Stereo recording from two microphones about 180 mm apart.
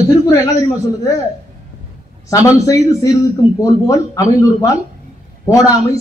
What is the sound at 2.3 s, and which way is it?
A man's voice, 15° left (ahead or behind).